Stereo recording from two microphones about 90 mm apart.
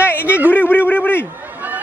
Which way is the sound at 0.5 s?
20° left (ahead or behind).